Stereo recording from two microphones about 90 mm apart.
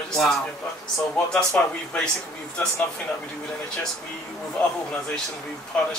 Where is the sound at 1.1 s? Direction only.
10° left (ahead or behind).